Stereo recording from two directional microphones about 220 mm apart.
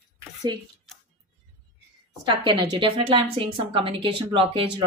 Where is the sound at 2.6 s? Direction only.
25° right (ahead or behind).